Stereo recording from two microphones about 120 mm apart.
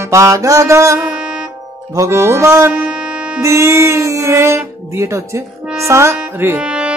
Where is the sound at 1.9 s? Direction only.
25° right (ahead or behind).